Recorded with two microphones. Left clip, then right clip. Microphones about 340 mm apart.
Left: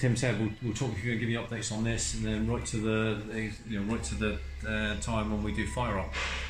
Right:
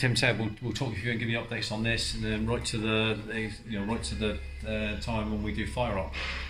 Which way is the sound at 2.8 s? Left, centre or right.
Right.